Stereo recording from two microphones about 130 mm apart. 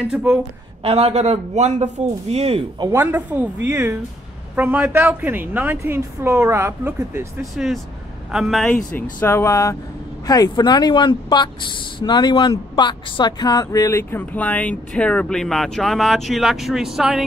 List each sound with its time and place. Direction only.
0.1 s a woman's voice: 10° right (ahead or behind)
0.8 s a man's voice: 50° right (ahead or behind)
2.9 s a woman's voice: 15° right (ahead or behind)
7.5 s speech: centre (ahead or behind)
8.9 s speech: 15° left (ahead or behind); by 17.2 s 5° right (ahead or behind)